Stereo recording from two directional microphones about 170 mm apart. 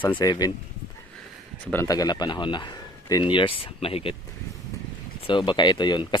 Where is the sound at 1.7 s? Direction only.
15° left (ahead or behind); by 4.1 s 35° left (ahead or behind).